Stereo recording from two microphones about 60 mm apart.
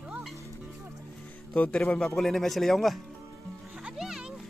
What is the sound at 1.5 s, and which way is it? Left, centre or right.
Speech, centre.